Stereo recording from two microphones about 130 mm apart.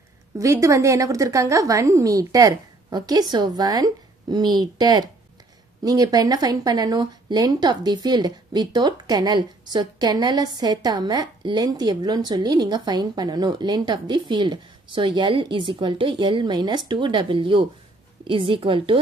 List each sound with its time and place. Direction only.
0.4 s a woman's voice: 25° right (ahead or behind); by 18.9 s 40° right (ahead or behind)